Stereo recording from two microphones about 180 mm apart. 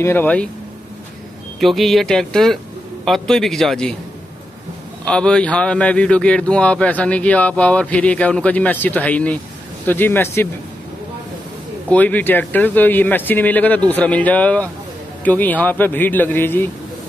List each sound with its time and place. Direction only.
0.0 s speech: 10° left (ahead or behind)
1.6 s speech: centre (ahead or behind)
5.0 s speech: 5° left (ahead or behind)
11.9 s speech: 10° left (ahead or behind)